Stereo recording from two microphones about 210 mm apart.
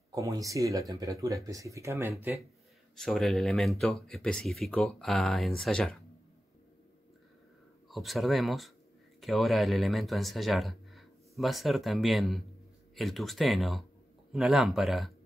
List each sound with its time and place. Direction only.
0.1 s speech: 15° right (ahead or behind)
3.0 s speech: centre (ahead or behind)
7.9 s speech: centre (ahead or behind)